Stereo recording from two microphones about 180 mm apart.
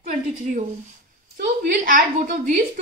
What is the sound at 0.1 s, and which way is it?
A woman's voice, 45° right (ahead or behind).